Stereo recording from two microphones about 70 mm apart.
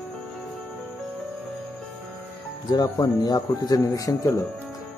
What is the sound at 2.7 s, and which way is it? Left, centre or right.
Speech, left.